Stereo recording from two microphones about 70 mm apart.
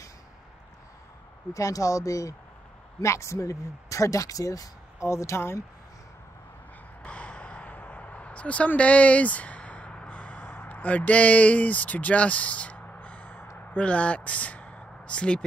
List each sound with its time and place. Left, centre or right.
1.5 s speech: left
7.0 s a sound: centre
13.7 s speech: centre